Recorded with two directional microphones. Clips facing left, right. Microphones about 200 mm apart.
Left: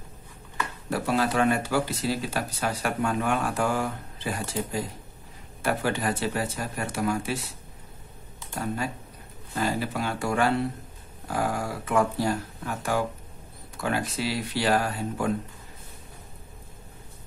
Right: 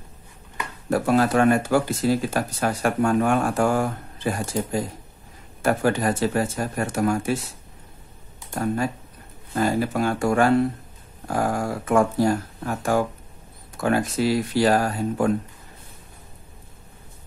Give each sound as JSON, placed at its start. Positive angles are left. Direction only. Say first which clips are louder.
{"t": 0.8, "sound": "speech", "louder": "right 6 dB", "side_deg": -50}
{"t": 9.6, "sound": "speech", "louder": "right 6 dB", "side_deg": -50}